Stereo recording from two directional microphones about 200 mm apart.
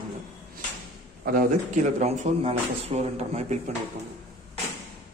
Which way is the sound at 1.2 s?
40° right (ahead or behind).